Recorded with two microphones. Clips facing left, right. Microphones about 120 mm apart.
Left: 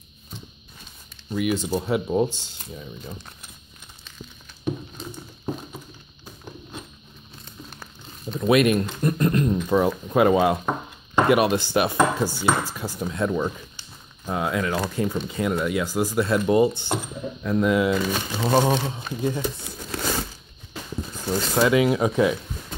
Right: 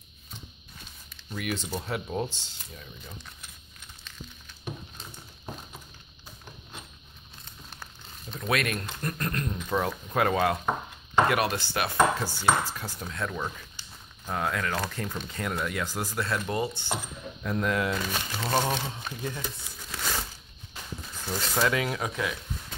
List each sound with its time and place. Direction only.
1.3 s speech: 10° left (ahead or behind)
7.8 s speech: 15° left (ahead or behind)
17.4 s speech: 5° left (ahead or behind)
21.5 s speech: 10° left (ahead or behind)
22.0 s speech: 25° left (ahead or behind)